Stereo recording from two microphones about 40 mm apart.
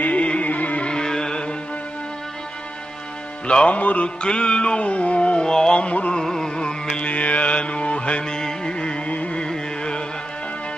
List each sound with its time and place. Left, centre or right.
0.0 s music: left
0.8 s music: centre
3.4 s music: left
3.7 s music: left
4.2 s music: left
5.8 s music: left
6.1 s carnatic music: centre
6.9 s music: left
9.5 s carnatic music: left